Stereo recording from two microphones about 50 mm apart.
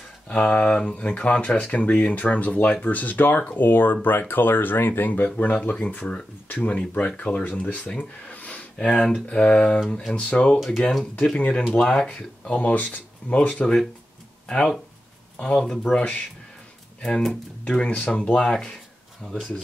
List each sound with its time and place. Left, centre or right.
0.3 s speech: left
5.3 s speech: left
8.3 s a sound: left
8.8 s speech: centre
15.3 s speech: centre
17.0 s speech: centre
17.3 s speech: left